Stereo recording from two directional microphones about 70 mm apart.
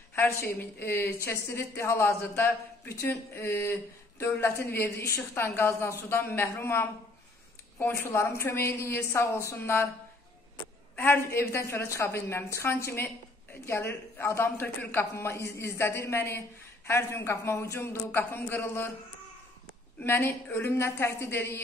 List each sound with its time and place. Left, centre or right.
0.1 s a man's voice: left
6.0 s a man's voice: left
11.1 s a man's voice: left
20.0 s a man's voice: left